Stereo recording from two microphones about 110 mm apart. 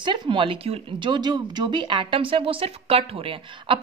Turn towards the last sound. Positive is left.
turn(degrees=-55)  # may be behind; listen again after turning